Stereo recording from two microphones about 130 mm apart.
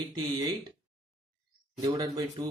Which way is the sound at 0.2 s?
35° right (ahead or behind).